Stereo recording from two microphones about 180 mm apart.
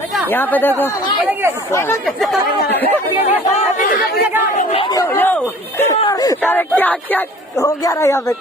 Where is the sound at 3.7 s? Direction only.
50° left (ahead or behind).